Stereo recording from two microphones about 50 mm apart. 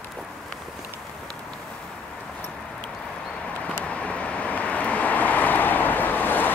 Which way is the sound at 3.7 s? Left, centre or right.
Left.